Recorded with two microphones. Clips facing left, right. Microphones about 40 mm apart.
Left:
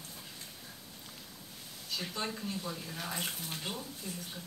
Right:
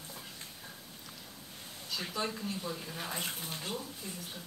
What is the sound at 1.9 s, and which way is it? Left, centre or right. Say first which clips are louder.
Speech: right 1 dB; centre.